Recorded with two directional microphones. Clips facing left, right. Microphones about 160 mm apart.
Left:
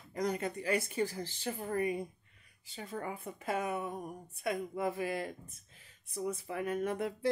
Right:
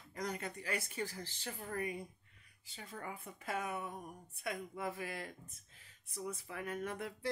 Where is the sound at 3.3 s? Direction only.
20° left (ahead or behind).